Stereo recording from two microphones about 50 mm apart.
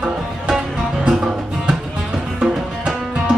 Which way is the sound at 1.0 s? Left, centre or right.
Centre.